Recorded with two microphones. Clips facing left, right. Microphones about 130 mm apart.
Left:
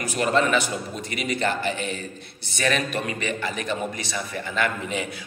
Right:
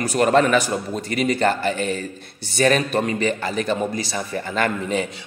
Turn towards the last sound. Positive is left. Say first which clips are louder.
# right 4 dB
turn(degrees=-40)  # may be behind; listen again after turning